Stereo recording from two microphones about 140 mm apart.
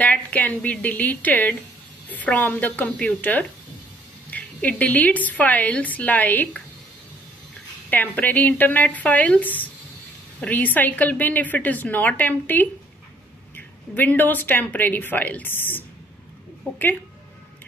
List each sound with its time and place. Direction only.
0.0 s a woman's voice: 10° left (ahead or behind)
7.9 s a woman's voice: 10° left (ahead or behind)